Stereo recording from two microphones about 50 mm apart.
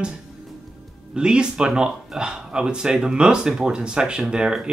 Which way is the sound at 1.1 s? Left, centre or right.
Centre.